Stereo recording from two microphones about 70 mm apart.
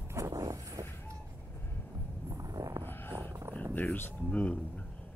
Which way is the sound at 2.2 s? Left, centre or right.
Right.